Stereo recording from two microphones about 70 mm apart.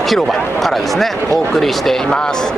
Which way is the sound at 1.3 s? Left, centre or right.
Right.